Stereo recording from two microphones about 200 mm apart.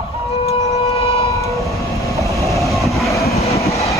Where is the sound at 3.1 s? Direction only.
15° left (ahead or behind).